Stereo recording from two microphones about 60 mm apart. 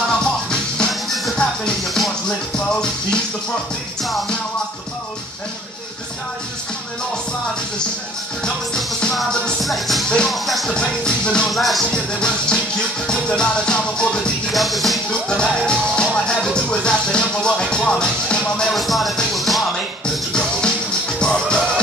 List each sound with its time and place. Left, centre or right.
0.1 s music: centre
1.0 s music: centre
1.3 s music: centre
9.6 s music: centre
10.0 s music: centre
10.3 s music: centre
10.7 s music: centre
11.4 s music: centre
11.9 s music: centre
14.5 s music: centre
15.0 s music: centre
18.7 s music: centre
21.2 s music: centre